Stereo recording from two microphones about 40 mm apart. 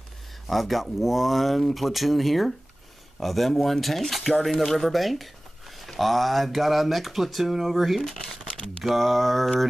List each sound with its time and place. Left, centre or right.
0.5 s speech: centre